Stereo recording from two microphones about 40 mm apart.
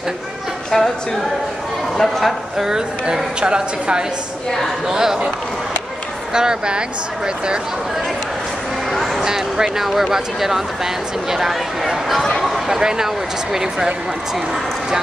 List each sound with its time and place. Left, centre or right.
0.7 s speech: centre
2.0 s speech: centre
2.5 s speech: centre
3.3 s a woman's voice: right
4.8 s speech: centre
6.3 s a woman's voice: centre
9.2 s speech: centre
12.6 s speech: centre